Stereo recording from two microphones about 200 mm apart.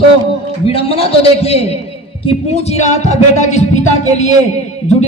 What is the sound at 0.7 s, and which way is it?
A man's voice, 30° left (ahead or behind).